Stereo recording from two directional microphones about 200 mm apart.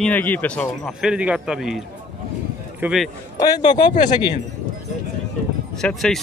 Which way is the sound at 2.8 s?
Centre (ahead or behind).